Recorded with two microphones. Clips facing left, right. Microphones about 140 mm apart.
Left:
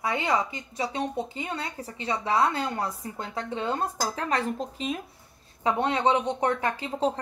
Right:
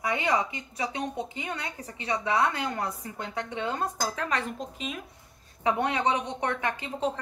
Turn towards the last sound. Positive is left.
turn(degrees=35)  # may be behind; listen again after turning